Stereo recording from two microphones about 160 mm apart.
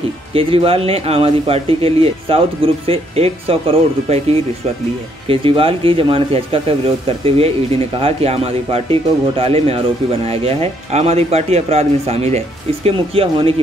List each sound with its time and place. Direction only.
0.3 s speech: 35° right (ahead or behind)